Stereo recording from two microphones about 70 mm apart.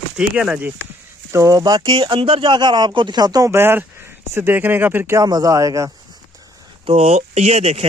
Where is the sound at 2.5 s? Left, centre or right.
Right.